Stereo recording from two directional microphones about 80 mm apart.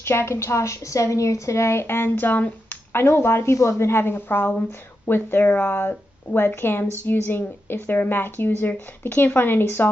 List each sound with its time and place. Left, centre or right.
0.0 s a woman's voice: left